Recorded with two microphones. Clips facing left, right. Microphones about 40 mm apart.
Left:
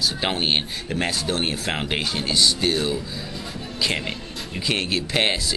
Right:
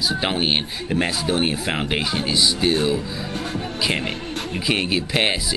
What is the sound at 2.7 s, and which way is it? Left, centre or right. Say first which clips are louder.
Speech: right 4 dB; centre.